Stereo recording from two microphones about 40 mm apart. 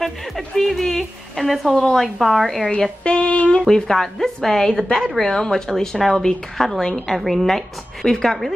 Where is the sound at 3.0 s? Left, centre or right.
Left.